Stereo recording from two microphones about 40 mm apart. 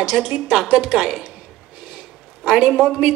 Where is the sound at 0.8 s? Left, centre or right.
Centre.